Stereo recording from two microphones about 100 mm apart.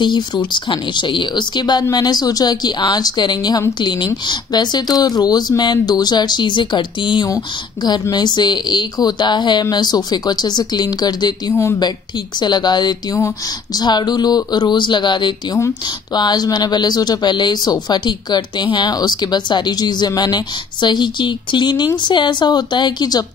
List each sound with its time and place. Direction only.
0.0 s speech: 50° left (ahead or behind)